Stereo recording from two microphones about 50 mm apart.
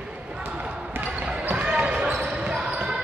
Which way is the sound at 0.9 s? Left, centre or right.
Right.